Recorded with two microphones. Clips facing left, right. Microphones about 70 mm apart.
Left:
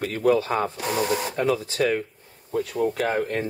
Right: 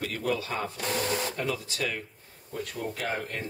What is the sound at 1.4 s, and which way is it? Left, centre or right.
Speech, left.